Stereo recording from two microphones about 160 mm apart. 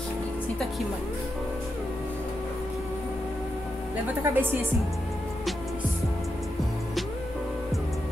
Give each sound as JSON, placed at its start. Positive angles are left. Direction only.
{"t": 4.2, "sound": "a woman's voice", "side_deg": -15}